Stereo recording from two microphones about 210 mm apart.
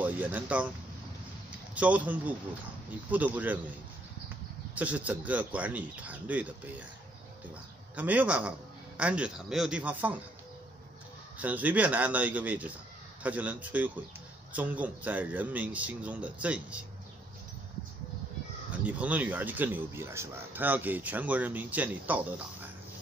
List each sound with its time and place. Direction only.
0.0 s speech: 10° right (ahead or behind)
1.8 s speech: 5° right (ahead or behind)
4.7 s speech: 5° right (ahead or behind)
7.9 s speech: 5° right (ahead or behind)
11.3 s speech: 5° right (ahead or behind)
18.7 s speech: 5° right (ahead or behind)